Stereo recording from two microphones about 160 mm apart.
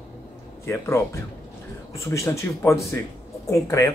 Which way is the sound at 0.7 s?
15° left (ahead or behind).